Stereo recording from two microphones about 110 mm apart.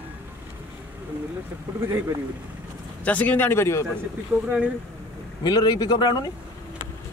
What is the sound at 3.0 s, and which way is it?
Speech, 15° left (ahead or behind).